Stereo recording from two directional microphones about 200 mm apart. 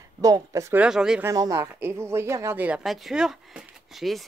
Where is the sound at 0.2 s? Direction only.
15° right (ahead or behind).